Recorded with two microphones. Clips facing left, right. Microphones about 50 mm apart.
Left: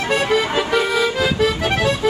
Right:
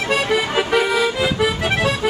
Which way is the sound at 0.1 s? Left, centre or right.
Centre.